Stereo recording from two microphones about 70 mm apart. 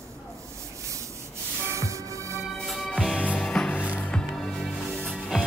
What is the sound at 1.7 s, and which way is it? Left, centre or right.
Music, right.